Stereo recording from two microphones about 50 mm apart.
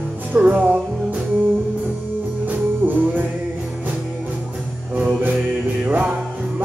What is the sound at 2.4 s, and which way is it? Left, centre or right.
Music, right.